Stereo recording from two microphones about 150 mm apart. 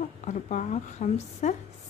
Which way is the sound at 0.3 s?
50° left (ahead or behind).